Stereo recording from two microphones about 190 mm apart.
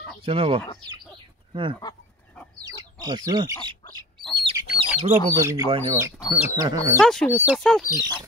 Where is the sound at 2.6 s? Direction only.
20° right (ahead or behind).